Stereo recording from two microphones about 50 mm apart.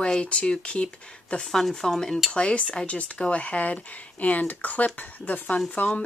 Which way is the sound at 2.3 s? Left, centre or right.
Left.